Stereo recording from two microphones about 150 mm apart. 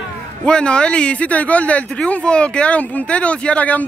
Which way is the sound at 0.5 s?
5° left (ahead or behind).